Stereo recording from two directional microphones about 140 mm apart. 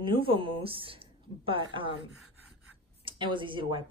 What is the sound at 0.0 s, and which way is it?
Speech, 40° right (ahead or behind).